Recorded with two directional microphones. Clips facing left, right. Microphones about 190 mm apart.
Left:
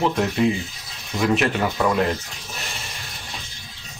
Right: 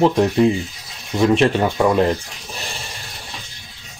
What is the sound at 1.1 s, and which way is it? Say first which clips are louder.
Speech: right 5 dB; 30° right (ahead or behind).